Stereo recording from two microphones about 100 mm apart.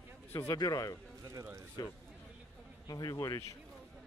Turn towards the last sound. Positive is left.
turn(degrees=40)  # may be behind; listen again after turning